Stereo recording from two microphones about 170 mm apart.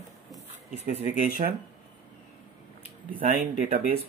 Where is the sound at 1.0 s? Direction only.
50° left (ahead or behind).